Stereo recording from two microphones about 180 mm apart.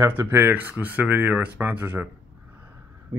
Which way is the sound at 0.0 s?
10° right (ahead or behind).